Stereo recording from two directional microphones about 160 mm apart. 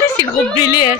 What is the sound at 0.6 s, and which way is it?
Speech, 25° left (ahead or behind).